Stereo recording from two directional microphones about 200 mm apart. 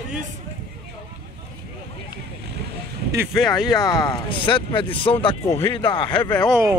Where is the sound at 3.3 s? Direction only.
Centre (ahead or behind).